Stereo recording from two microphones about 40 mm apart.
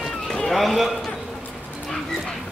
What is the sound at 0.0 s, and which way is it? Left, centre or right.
Run, centre.